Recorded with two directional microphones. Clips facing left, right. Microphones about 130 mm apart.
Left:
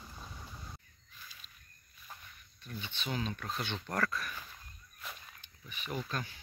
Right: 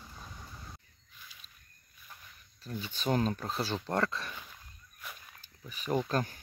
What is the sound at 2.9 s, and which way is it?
Speech, 45° right (ahead or behind).